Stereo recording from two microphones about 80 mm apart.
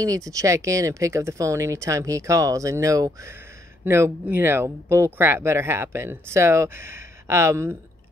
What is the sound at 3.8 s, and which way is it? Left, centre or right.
Speech, right.